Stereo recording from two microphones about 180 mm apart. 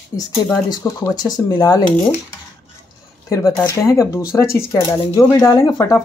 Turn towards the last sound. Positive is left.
turn(degrees=15)  # may be behind; listen again after turning